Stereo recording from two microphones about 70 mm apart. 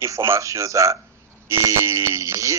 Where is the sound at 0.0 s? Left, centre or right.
Right.